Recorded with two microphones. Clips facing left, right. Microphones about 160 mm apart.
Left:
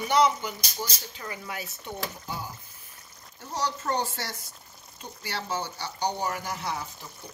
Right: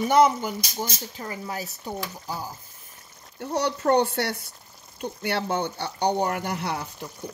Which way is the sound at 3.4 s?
65° right (ahead or behind).